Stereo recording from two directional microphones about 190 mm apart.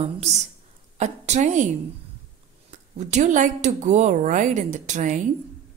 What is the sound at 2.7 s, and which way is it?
A woman's voice, 40° right (ahead or behind).